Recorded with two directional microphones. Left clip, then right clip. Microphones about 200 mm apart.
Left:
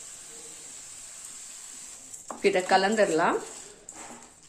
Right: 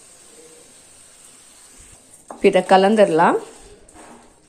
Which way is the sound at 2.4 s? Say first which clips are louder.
Right 9 dB; 35° right (ahead or behind).